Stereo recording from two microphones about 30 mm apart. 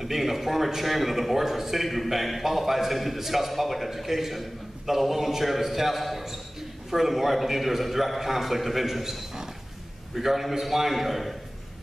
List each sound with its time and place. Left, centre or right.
0.0 s a man's voice: centre